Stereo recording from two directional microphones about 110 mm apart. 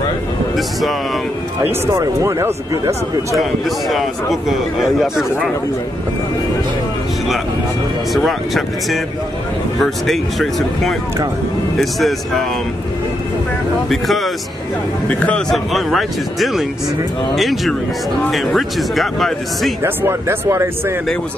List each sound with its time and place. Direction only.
0.6 s a man's voice: centre (ahead or behind)
1.9 s speech: 30° right (ahead or behind)
3.3 s a man's voice: centre (ahead or behind)
8.1 s a man's voice: centre (ahead or behind)
13.8 s a man's voice: centre (ahead or behind)
15.0 s a man's voice: 10° left (ahead or behind)
15.5 s a man's voice: centre (ahead or behind)
19.8 s speech: 20° right (ahead or behind)